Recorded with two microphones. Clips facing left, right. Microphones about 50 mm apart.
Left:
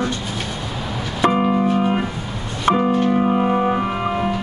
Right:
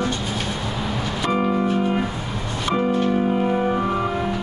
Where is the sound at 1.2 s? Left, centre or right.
Left.